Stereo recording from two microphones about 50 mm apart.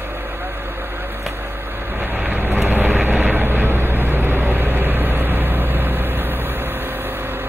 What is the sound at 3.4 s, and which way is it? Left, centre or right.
Vehicle, right.